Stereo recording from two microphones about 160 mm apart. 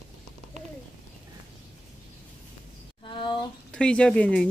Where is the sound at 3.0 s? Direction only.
30° left (ahead or behind).